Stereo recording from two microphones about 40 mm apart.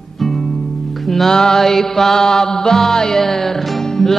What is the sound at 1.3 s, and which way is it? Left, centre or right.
Music, centre.